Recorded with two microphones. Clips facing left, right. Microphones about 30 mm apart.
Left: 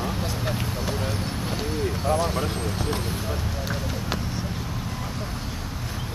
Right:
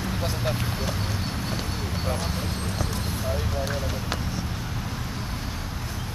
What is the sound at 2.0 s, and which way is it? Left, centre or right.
Speech, centre.